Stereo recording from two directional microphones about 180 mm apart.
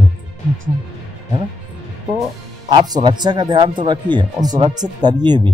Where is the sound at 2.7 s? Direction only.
25° right (ahead or behind).